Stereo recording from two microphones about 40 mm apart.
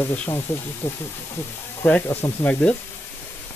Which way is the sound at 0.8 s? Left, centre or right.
Left.